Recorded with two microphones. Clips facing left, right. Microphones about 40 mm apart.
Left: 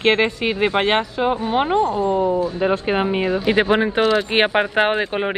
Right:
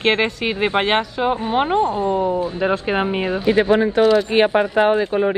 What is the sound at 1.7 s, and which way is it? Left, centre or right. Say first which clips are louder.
Speech: even; right.